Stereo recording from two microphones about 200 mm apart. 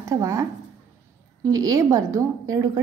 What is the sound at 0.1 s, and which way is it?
A woman's voice, 15° right (ahead or behind).